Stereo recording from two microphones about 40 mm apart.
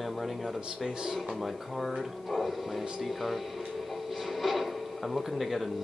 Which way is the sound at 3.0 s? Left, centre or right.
Centre.